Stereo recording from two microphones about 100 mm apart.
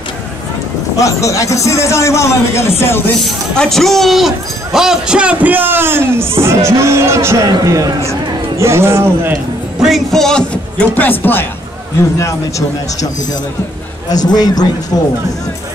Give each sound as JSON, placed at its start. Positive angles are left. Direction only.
{"t": 0.9, "sound": "a man's voice", "side_deg": 35}
{"t": 3.3, "sound": "a man's voice", "side_deg": 5}
{"t": 9.8, "sound": "a man's voice", "side_deg": 0}
{"t": 12.2, "sound": "speech", "side_deg": 30}